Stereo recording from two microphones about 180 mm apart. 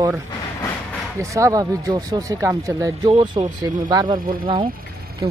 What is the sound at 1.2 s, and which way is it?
Speech, 15° right (ahead or behind).